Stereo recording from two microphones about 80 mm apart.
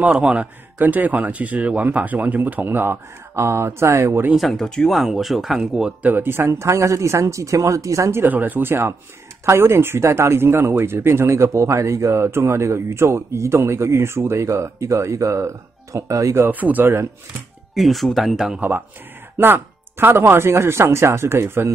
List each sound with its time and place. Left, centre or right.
0.0 s a man's voice: centre; by 4.3 s right
4.4 s speech: centre
6.0 s speech: right
16.4 s speech: right
17.7 s speech: centre
19.3 s speech: right